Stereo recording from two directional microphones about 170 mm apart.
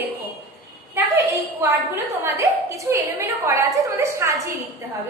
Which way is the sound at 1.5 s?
10° right (ahead or behind).